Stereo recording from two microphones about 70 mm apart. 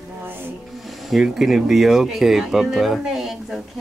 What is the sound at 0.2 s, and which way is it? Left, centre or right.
Music, right.